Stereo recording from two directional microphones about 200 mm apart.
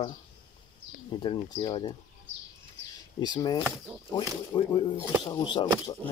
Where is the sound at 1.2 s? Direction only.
25° left (ahead or behind).